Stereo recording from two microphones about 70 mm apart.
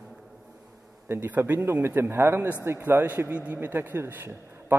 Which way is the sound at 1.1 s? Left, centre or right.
Right.